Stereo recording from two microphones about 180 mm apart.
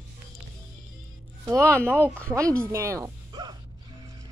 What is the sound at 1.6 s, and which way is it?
Speech, 5° left (ahead or behind).